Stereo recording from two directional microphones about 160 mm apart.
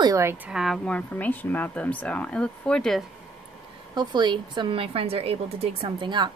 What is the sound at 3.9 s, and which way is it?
A woman's voice, 30° right (ahead or behind).